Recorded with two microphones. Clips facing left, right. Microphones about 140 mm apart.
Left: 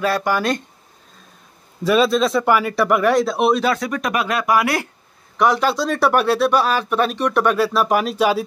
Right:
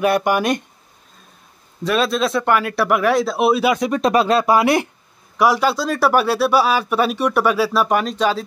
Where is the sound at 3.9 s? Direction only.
30° right (ahead or behind).